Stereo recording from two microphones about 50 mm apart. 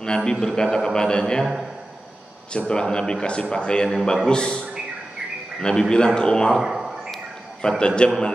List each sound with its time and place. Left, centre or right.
0.0 s a man's voice: centre
2.5 s a man's voice: centre
6.6 s a sound: centre
7.6 s a man's voice: centre